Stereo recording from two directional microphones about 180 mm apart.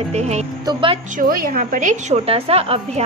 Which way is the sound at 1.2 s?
50° right (ahead or behind).